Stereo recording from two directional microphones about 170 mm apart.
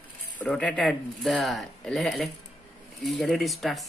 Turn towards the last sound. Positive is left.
turn(degrees=0)  # may be behind; listen again after turning